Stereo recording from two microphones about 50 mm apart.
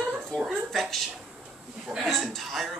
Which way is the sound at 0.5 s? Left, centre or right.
Centre.